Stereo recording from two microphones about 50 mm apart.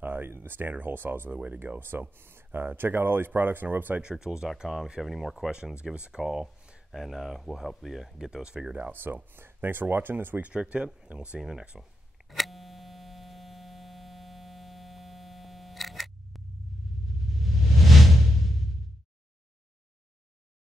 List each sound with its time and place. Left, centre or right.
0.0 s speech: right
4.0 s speech: centre
6.2 s speech: centre
8.9 s speech: right
10.4 s speech: right
12.3 s mains hum: centre
17.4 s a sound: centre